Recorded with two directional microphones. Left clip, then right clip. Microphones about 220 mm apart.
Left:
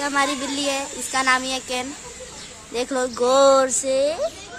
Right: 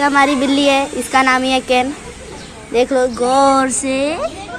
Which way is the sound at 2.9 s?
20° left (ahead or behind).